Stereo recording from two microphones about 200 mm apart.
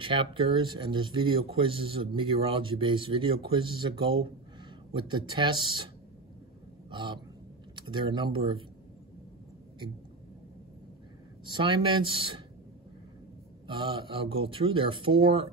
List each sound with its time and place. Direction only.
0.0 s speech: 25° right (ahead or behind)
6.9 s speech: 25° right (ahead or behind)
11.4 s speech: 25° right (ahead or behind)
13.7 s speech: 25° right (ahead or behind)